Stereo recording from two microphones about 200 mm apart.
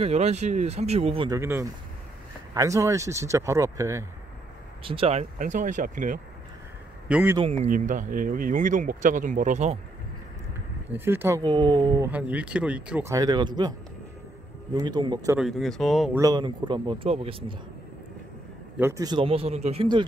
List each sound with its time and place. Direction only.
0.0 s speech: 35° right (ahead or behind)
1.3 s speech: 15° right (ahead or behind)
4.8 s speech: 30° right (ahead or behind)
7.1 s speech: 5° right (ahead or behind)
7.7 s speech: 40° right (ahead or behind)
11.1 s a man's voice: 10° right (ahead or behind)
12.1 s speech: 5° right (ahead or behind)
13.1 s a man's voice: 20° right (ahead or behind)
15.3 s speech: centre (ahead or behind)
16.2 s a man's voice: 20° right (ahead or behind)
18.8 s a man's voice: 15° right (ahead or behind)